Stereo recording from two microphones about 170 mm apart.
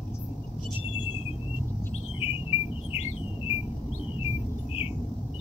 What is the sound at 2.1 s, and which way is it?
Bird, 35° left (ahead or behind).